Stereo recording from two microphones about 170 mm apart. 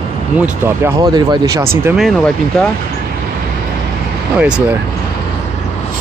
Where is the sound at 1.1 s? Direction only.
20° right (ahead or behind).